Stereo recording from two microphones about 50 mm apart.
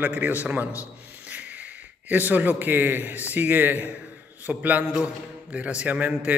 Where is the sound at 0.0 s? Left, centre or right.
Right.